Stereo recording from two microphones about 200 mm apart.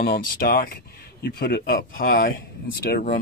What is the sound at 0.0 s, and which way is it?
Speech, 50° left (ahead or behind).